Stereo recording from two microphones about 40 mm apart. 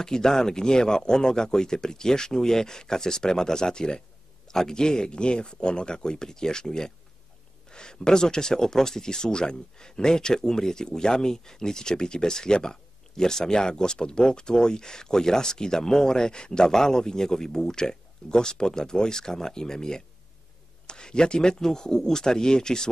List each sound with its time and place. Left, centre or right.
0.0 s speech: centre